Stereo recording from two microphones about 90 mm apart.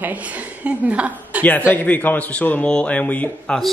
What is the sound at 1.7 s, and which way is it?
A man's voice, 20° left (ahead or behind).